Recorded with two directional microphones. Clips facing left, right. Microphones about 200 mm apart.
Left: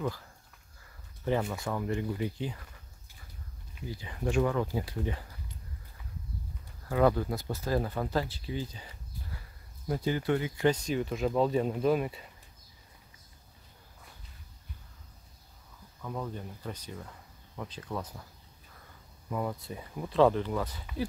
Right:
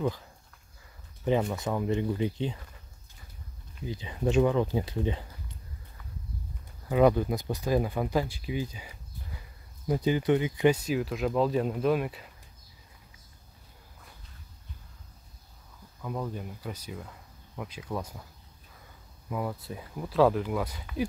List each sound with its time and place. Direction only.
1.2 s speech: 20° right (ahead or behind)
3.8 s speech: 20° right (ahead or behind)
6.9 s speech: 15° right (ahead or behind); by 12.3 s centre (ahead or behind)
16.0 s speech: 10° right (ahead or behind)
19.2 s speech: 5° right (ahead or behind)